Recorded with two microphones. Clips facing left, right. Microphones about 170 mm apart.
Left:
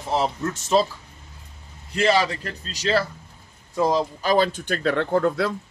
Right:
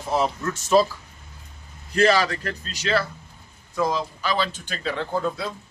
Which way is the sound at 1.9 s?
20° left (ahead or behind).